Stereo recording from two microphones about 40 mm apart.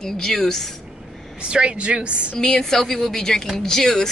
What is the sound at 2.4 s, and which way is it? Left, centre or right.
Speech, centre.